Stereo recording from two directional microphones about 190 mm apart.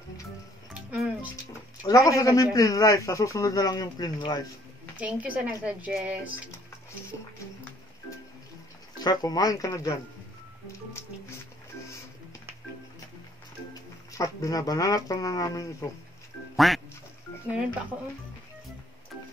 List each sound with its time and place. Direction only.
0.9 s speech: 10° right (ahead or behind)
1.3 s a man's voice: 15° left (ahead or behind)
4.9 s speech: 5° right (ahead or behind)
9.0 s speech: 20° left (ahead or behind)
10.9 s music: 15° left (ahead or behind)
14.1 s speech: 20° left (ahead or behind)
16.5 s quack: centre (ahead or behind)